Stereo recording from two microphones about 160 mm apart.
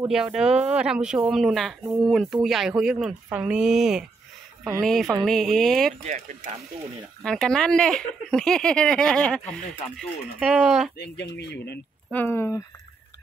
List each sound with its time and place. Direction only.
0.1 s speech: 5° right (ahead or behind)
7.2 s speech: 5° left (ahead or behind)
11.0 s speech: 90° left
12.1 s speech: 15° left (ahead or behind)